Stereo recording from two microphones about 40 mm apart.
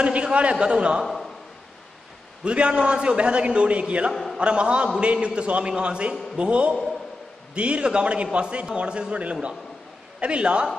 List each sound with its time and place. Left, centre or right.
0.0 s a man's voice: right
2.4 s a man's voice: right
4.1 s a man's voice: centre
4.4 s a man's voice: right